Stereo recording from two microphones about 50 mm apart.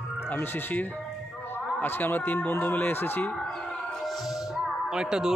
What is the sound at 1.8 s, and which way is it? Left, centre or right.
Speech, left.